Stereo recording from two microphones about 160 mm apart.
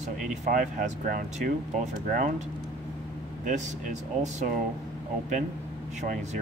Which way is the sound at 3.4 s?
50° right (ahead or behind).